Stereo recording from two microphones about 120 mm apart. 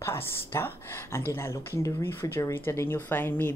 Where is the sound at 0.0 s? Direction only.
20° left (ahead or behind).